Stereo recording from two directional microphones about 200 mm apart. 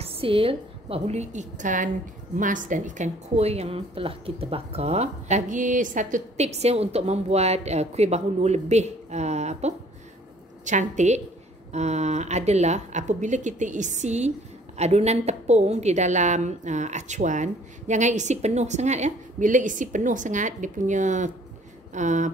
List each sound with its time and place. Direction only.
0.0 s a woman's voice: 30° right (ahead or behind)